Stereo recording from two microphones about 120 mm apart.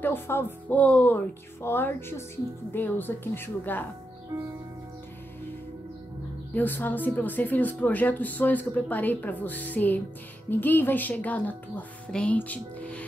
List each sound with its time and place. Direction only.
0.0 s speech: 20° left (ahead or behind)
6.5 s speech: 15° left (ahead or behind)